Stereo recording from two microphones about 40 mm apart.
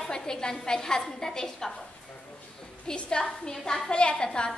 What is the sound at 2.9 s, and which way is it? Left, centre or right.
Speech, left.